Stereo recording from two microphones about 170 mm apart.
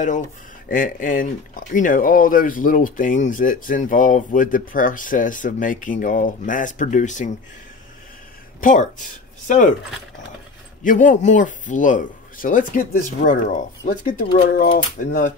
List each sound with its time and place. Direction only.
0.7 s speech: 50° left (ahead or behind)
8.5 s speech: 50° left (ahead or behind)
10.8 s speech: 50° left (ahead or behind)